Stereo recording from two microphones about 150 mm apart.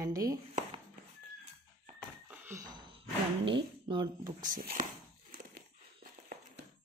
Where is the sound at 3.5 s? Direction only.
35° right (ahead or behind).